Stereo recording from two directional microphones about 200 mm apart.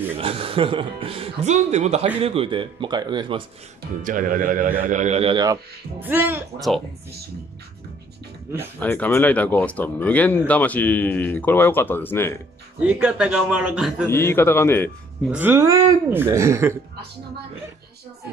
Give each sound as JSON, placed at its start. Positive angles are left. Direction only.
{"t": 0.2, "sound": "speech", "side_deg": -30}
{"t": 4.0, "sound": "speech", "side_deg": -40}
{"t": 8.7, "sound": "speech", "side_deg": 10}
{"t": 12.8, "sound": "a man's voice", "side_deg": -5}
{"t": 14.0, "sound": "speech", "side_deg": 10}
{"t": 15.3, "sound": "speech", "side_deg": -10}